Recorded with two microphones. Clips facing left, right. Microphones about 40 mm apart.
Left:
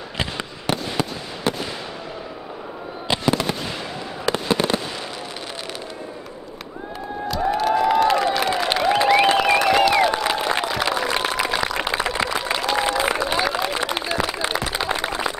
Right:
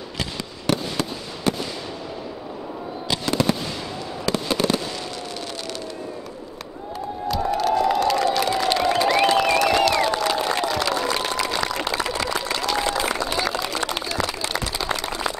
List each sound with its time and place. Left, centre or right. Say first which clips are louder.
0.7 s fireworks: even; centre
3.3 s fireworks: right 2 dB; centre
7.5 s a sound: left 2 dB; centre